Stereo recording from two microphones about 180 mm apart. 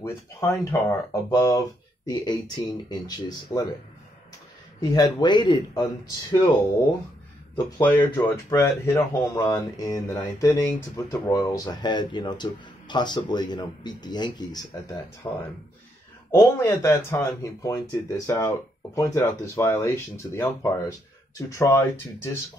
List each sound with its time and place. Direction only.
0.0 s speech: 15° left (ahead or behind)
4.7 s speech: 20° left (ahead or behind)
7.8 s speech: 15° left (ahead or behind)